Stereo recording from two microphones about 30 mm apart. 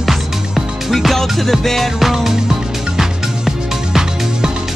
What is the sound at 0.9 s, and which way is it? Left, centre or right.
Music, centre.